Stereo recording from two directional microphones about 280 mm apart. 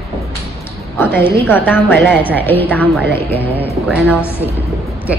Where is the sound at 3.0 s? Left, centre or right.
Right.